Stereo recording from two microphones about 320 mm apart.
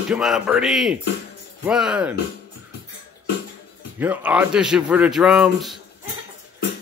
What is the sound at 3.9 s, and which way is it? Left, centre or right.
Speech, centre.